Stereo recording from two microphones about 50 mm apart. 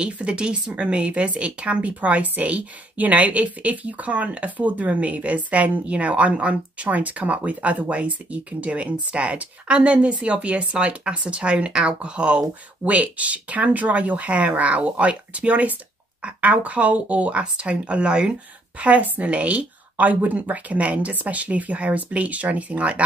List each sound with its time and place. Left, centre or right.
0.0 s a woman's voice: centre
12.9 s a woman's voice: right